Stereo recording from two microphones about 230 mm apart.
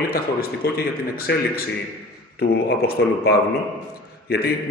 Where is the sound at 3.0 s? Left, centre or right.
Left.